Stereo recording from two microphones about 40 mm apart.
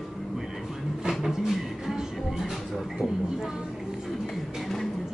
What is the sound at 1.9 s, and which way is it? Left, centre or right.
Music, centre.